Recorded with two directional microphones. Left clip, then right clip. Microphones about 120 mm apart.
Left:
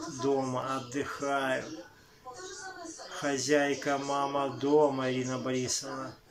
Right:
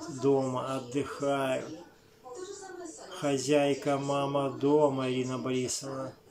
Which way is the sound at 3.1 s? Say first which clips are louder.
Right 1 dB; 20° right (ahead or behind).